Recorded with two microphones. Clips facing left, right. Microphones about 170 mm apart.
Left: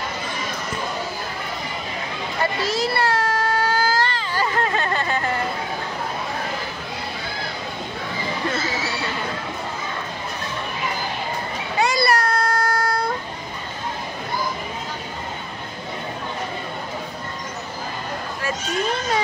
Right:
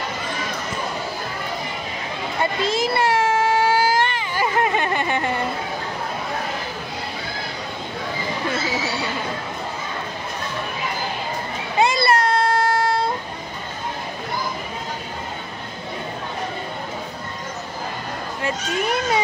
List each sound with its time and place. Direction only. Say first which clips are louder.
2.4 s baby cry: right 1 dB; 20° right (ahead or behind)
3.6 s whimper: right 3 dB; 20° right (ahead or behind)
11.8 s vehicle: right 2 dB; 25° right (ahead or behind)
18.4 s children playing: right 1 dB; 15° right (ahead or behind)